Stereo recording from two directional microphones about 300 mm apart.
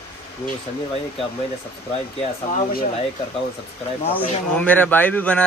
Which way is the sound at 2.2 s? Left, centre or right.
Left.